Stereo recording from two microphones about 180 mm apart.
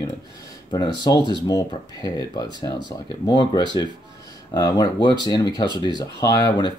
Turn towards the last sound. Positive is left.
turn(degrees=25)  # may be behind; listen again after turning